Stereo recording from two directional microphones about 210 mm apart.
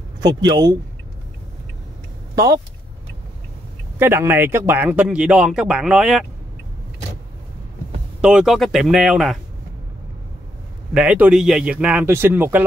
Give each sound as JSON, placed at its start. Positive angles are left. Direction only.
{"t": 0.2, "sound": "speech", "side_deg": -20}
{"t": 2.3, "sound": "speech", "side_deg": -15}
{"t": 4.0, "sound": "speech", "side_deg": -10}
{"t": 8.2, "sound": "speech", "side_deg": -5}
{"t": 10.9, "sound": "a man's voice", "side_deg": -5}